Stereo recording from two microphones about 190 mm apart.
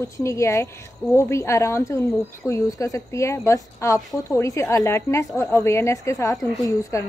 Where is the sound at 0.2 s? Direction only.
15° left (ahead or behind).